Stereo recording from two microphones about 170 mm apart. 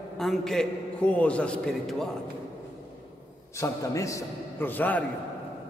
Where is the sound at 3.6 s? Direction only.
20° left (ahead or behind).